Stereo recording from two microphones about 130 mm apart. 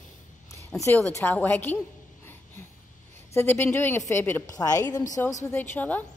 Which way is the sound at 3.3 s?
15° left (ahead or behind).